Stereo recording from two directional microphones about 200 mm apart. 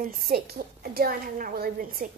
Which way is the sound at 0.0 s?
45° right (ahead or behind).